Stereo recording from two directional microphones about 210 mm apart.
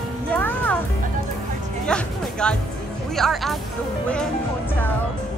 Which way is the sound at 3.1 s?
Centre (ahead or behind).